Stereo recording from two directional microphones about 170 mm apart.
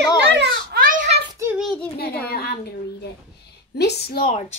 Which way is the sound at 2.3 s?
65° left (ahead or behind).